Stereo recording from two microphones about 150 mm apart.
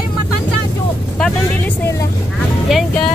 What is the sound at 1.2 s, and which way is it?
Speech, 5° left (ahead or behind).